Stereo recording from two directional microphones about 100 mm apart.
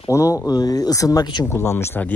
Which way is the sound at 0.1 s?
30° left (ahead or behind).